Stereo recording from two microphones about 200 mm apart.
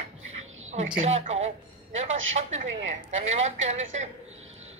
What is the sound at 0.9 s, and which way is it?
Speech, 30° right (ahead or behind).